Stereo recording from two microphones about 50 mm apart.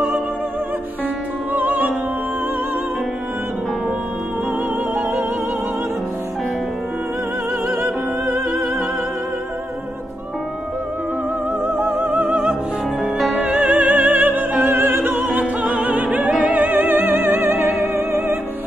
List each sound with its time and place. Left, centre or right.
1.5 s music: right
7.6 s music: centre
11.6 s music: right
14.6 s opera: right
15.8 s opera: right
16.3 s music: right